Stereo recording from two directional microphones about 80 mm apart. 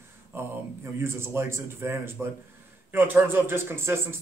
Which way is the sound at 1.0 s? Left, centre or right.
Right.